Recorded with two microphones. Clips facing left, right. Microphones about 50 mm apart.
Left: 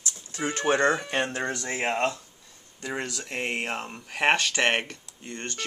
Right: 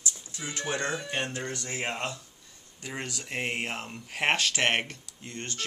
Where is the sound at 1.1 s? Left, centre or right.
Left.